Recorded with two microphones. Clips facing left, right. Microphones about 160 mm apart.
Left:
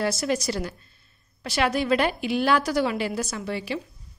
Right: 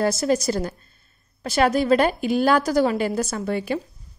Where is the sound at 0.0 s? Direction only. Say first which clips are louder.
Right 5 dB; 45° right (ahead or behind).